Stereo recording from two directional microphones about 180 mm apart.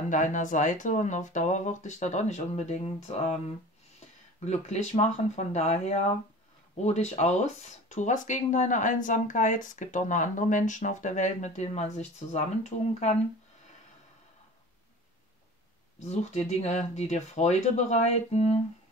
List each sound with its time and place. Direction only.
0.1 s speech: 45° left (ahead or behind)
4.5 s speech: 40° left (ahead or behind)
16.0 s speech: 40° left (ahead or behind)